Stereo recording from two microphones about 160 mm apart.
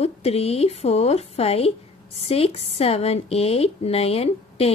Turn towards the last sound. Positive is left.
turn(degrees=40)  # may be behind; listen again after turning